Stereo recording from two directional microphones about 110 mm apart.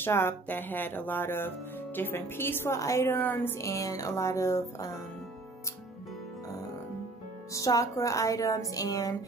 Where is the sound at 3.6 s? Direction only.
30° left (ahead or behind).